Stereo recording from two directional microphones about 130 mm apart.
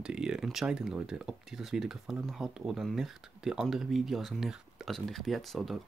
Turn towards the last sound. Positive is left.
turn(degrees=0)  # may be behind; listen again after turning